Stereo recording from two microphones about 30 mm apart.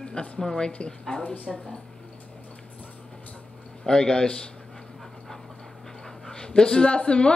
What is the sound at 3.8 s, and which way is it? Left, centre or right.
Speech, left.